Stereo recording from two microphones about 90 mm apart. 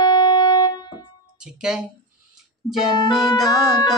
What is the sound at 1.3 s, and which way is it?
Music, 10° right (ahead or behind).